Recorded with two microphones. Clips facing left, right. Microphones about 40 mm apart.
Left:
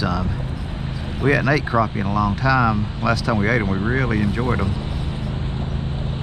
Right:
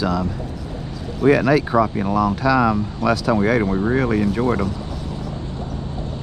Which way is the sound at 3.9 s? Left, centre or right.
Centre.